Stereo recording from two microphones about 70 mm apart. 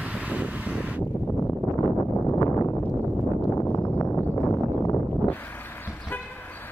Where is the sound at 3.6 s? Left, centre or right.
Left.